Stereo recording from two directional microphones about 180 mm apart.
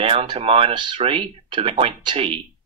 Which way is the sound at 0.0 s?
35° right (ahead or behind).